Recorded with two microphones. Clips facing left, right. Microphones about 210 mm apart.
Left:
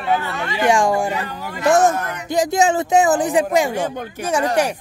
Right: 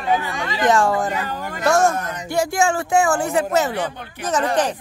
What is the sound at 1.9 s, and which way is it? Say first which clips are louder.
Speech: left 1 dB; 60° left (ahead or behind).